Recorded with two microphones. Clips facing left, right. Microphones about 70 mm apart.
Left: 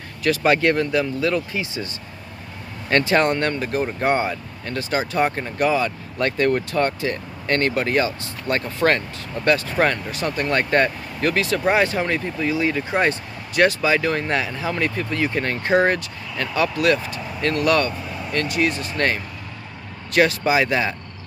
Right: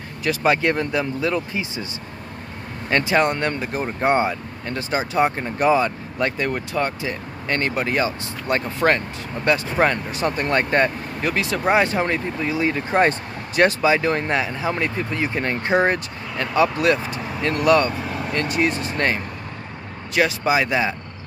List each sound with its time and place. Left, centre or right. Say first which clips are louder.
0.2 s speech: left 1 dB; centre
2.9 s speech: left 1 dB; centre
5.6 s speech: right 2 dB; right
18.0 s vehicle: right 4 dB; right
18.3 s speech: even; right
20.2 s speech: left 2 dB; centre